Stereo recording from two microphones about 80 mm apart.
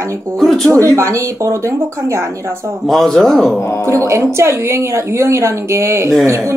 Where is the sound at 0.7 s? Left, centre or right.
Right.